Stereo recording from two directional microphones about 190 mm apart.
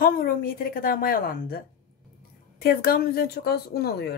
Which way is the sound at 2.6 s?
50° left (ahead or behind).